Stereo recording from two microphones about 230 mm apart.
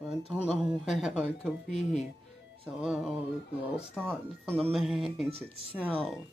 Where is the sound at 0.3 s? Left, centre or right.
Centre.